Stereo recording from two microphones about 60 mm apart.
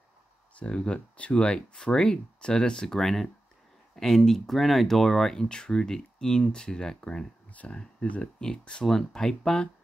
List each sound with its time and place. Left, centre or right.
0.6 s speech: centre